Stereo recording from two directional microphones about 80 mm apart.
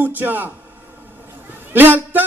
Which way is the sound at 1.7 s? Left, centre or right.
Right.